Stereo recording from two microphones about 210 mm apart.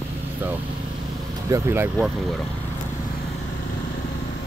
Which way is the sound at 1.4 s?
15° right (ahead or behind).